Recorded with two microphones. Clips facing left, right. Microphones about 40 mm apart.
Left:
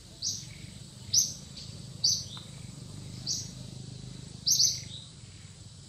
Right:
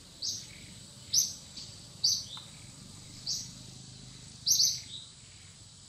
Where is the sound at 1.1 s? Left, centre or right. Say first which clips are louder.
Left 2 dB; centre.